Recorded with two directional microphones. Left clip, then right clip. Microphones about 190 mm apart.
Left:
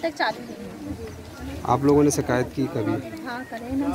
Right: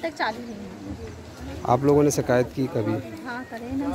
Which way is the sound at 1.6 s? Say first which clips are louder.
Even; 45° right (ahead or behind).